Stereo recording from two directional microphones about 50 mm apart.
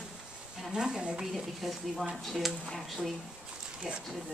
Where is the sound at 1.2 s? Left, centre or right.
Centre.